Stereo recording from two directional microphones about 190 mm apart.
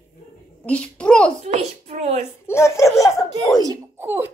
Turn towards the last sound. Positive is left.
turn(degrees=-10)  # may be behind; listen again after turning